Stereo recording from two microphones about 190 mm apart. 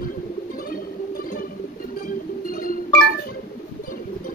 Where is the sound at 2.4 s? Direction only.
50° left (ahead or behind).